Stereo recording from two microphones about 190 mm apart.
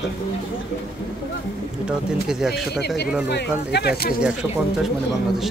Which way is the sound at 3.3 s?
60° left (ahead or behind).